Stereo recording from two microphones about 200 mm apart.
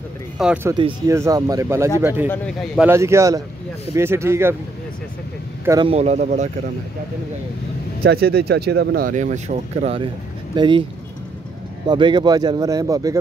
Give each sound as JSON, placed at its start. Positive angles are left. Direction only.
{"t": 0.4, "sound": "speech", "side_deg": 0}
{"t": 0.7, "sound": "speech", "side_deg": -25}
{"t": 2.2, "sound": "a man's voice", "side_deg": 10}
{"t": 2.8, "sound": "speech", "side_deg": -15}
{"t": 5.7, "sound": "speech", "side_deg": -20}
{"t": 5.9, "sound": "speech", "side_deg": -35}
{"t": 8.0, "sound": "speech", "side_deg": -50}
{"t": 11.9, "sound": "speech", "side_deg": -25}